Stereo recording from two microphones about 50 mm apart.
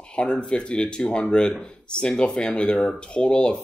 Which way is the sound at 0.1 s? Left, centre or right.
Left.